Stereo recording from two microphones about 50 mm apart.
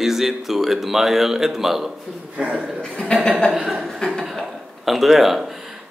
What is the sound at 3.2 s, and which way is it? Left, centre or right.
Speech, centre.